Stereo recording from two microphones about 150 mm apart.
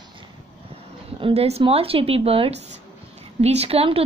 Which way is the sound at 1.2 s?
45° right (ahead or behind).